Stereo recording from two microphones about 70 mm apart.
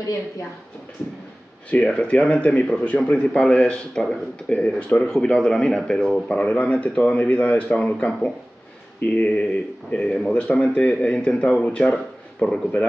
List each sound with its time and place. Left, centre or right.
1.7 s speech: centre